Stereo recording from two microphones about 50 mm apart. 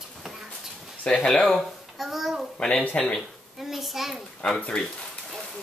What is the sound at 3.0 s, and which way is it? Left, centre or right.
Speech, centre.